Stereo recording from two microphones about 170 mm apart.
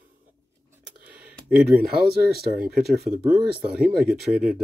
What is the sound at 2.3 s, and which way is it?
Speech, 60° right (ahead or behind).